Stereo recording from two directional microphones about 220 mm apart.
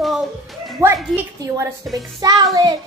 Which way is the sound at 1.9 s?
15° right (ahead or behind).